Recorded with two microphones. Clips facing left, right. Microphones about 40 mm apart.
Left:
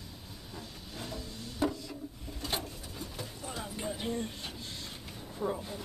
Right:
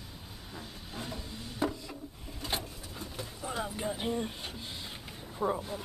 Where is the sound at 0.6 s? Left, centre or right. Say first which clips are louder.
Right 2 dB; centre.